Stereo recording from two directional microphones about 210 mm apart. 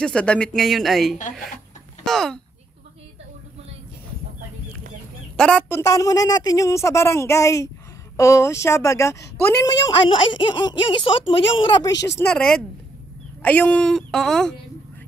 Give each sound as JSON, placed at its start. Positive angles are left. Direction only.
{"t": 0.0, "sound": "speech", "side_deg": 5}
{"t": 5.4, "sound": "a woman's voice", "side_deg": 5}
{"t": 12.2, "sound": "speech", "side_deg": 5}